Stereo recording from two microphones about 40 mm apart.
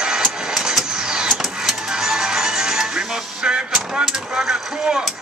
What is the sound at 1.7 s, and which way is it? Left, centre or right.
Music, centre.